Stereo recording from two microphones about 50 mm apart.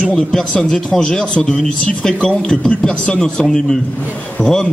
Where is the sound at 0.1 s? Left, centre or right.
Centre.